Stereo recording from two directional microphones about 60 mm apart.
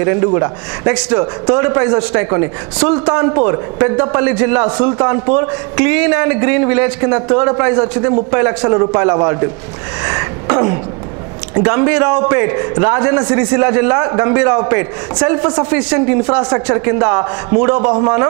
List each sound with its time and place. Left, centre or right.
0.0 s a man's voice: right
0.9 s a man's voice: centre
2.2 s a man's voice: right
2.8 s speech: centre
3.3 s a man's voice: right
10.0 s a sound: right
11.6 s a man's voice: centre
16.7 s a man's voice: right